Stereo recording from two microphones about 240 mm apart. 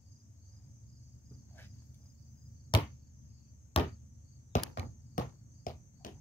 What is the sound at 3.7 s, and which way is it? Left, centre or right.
Cricket, left.